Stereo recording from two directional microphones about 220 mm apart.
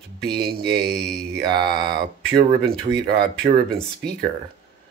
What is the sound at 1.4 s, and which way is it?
Speech, 45° right (ahead or behind).